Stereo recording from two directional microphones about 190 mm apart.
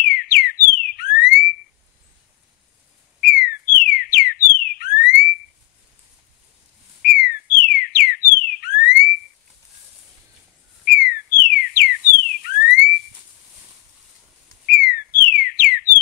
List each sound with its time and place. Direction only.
0.1 s car alarm: 50° left (ahead or behind)
3.2 s whistle: 50° left (ahead or behind)
7.0 s whistle: 50° left (ahead or behind)
10.9 s bird: 50° left (ahead or behind)
12.4 s a sound: 50° left (ahead or behind)
14.7 s whistling: 50° left (ahead or behind)